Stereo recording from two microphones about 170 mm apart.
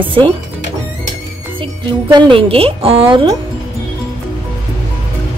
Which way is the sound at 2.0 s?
25° right (ahead or behind).